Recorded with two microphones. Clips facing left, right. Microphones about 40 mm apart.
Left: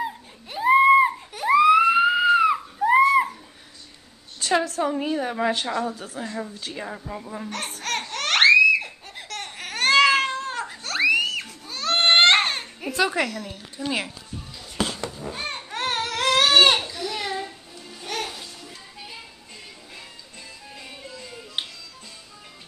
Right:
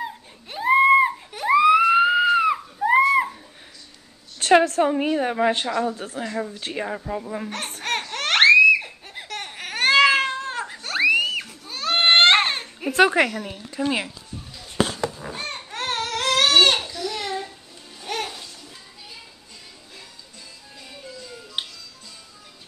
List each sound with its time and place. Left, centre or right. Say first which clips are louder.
0.0 s a sound: left 2 dB; centre
4.4 s a sound: right 6 dB; right
4.8 s a woman's voice: right 3 dB; right
7.2 s speech: right 2 dB; centre
8.1 s crying: right 1 dB; centre
12.9 s a woman's voice: right 6 dB; right
15.4 s baby cry: left 1 dB; centre
16.9 s a sound: right 1 dB; centre
18.0 s music: right 1 dB; centre
21.6 s music: even; centre